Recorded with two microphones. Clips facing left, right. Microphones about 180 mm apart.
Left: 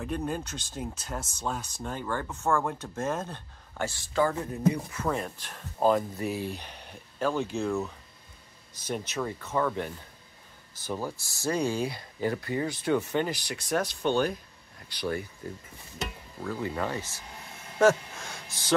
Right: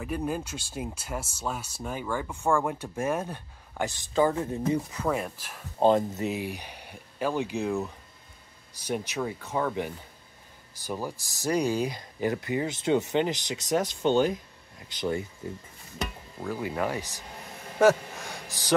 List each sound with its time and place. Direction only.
0.0 s speech: 5° right (ahead or behind)
5.8 s speech: 25° right (ahead or behind)
16.4 s speech: 15° right (ahead or behind)
17.7 s a sound: 15° right (ahead or behind)